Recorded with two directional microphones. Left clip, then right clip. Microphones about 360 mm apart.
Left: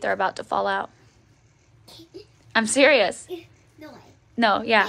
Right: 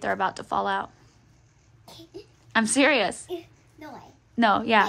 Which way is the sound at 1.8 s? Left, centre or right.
Centre.